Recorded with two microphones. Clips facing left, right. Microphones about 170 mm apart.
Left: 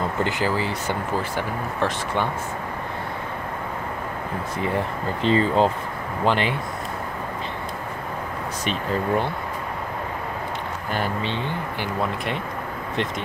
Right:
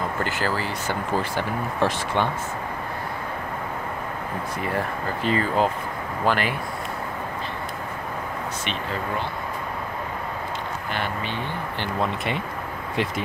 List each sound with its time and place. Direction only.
0.2 s speech: 20° left (ahead or behind)
1.8 s speech: centre (ahead or behind)
4.6 s speech: 25° left (ahead or behind)
11.2 s speech: 20° left (ahead or behind)
11.8 s speech: centre (ahead or behind)